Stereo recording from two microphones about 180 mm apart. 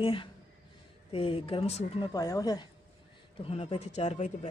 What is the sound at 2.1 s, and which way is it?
Speech, 20° left (ahead or behind).